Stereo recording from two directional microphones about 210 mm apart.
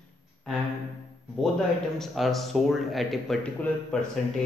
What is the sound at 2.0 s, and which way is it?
Speech, centre (ahead or behind).